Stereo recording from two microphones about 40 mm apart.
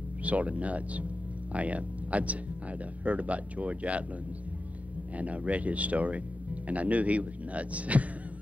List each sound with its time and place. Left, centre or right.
0.2 s speech: right
5.1 s speech: right